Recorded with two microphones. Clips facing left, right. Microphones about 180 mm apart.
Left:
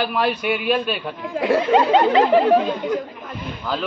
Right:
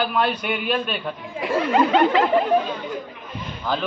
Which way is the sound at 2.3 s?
80° left.